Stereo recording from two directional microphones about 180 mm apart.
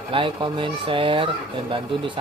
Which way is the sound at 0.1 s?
25° right (ahead or behind).